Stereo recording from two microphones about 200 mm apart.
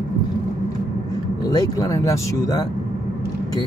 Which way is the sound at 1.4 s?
20° left (ahead or behind).